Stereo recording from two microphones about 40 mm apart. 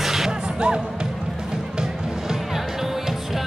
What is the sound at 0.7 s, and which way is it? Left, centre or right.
Basketball bounce, right.